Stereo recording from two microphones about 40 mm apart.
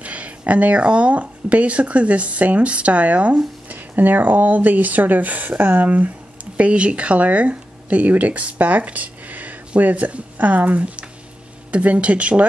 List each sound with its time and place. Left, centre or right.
0.0 s speech: right
3.6 s speech: right